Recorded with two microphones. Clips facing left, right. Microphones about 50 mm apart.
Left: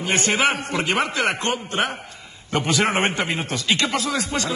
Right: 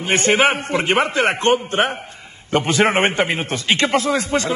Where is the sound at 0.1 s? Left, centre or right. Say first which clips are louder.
Right 5 dB; right.